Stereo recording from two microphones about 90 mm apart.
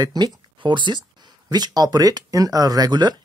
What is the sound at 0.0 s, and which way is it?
Speech, 50° right (ahead or behind).